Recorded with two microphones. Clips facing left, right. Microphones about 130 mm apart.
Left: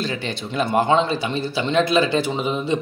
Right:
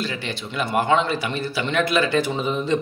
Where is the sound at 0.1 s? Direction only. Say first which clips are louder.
Left 3 dB; 30° left (ahead or behind).